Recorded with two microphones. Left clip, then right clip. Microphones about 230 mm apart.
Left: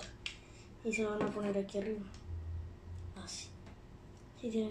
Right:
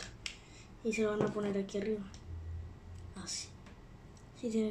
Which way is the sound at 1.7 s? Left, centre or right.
Right.